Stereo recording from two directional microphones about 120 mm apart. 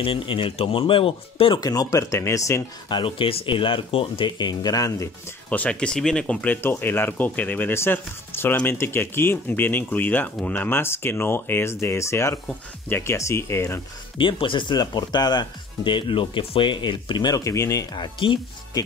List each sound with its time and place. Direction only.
0.0 s speech: 50° left (ahead or behind)
1.6 s speech: 30° left (ahead or behind)
2.9 s speech: 45° left (ahead or behind); by 5.1 s 25° left (ahead or behind)
5.5 s speech: 10° left (ahead or behind)
14.1 s speech: 45° left (ahead or behind); by 17.8 s 25° left (ahead or behind)
17.9 s speech: 40° left (ahead or behind)